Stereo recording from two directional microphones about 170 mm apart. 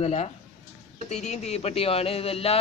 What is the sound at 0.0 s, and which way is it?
Speech, 40° left (ahead or behind).